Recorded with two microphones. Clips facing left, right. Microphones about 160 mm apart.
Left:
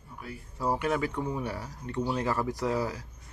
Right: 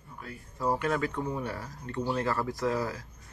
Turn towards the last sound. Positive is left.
turn(degrees=10)  # may be behind; listen again after turning